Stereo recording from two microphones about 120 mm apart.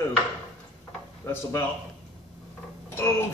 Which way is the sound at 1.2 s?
25° left (ahead or behind).